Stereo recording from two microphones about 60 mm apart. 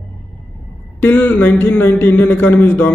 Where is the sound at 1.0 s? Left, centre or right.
Left.